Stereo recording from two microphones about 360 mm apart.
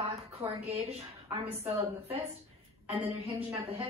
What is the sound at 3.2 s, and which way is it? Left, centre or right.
Speech, centre.